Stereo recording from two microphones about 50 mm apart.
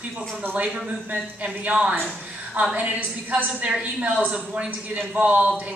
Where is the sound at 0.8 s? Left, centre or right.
Right.